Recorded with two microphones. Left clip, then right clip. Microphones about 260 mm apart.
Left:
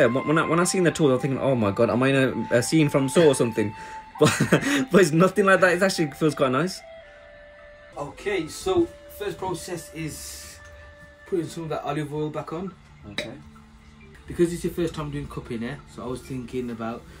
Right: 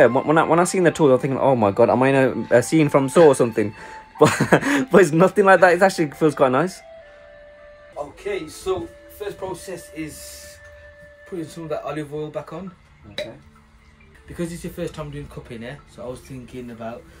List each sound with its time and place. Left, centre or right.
0.3 s speech: centre
8.4 s speech: centre